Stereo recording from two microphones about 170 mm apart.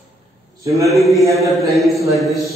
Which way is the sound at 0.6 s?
20° right (ahead or behind).